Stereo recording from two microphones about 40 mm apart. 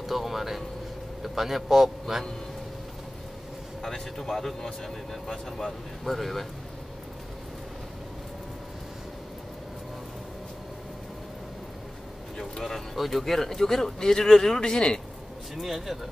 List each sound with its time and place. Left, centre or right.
0.0 s a sound: centre
1.2 s a man's voice: centre
3.8 s speech: centre
12.4 s vehicle: centre
12.9 s speech: centre
15.5 s speech: centre